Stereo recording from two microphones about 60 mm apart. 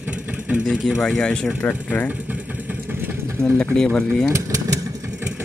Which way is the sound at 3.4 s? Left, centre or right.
Right.